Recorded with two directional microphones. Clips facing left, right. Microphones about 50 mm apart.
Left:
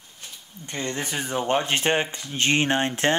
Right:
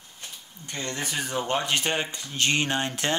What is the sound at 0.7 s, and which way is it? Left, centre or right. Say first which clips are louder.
Speech: left 3 dB; left.